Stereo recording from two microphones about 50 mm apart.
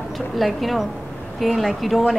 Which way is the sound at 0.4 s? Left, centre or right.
Centre.